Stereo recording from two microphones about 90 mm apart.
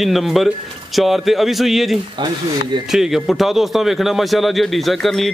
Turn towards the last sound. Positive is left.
turn(degrees=0)  # may be behind; listen again after turning